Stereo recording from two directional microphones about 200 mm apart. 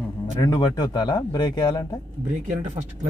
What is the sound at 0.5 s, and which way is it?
A man's voice, 20° left (ahead or behind).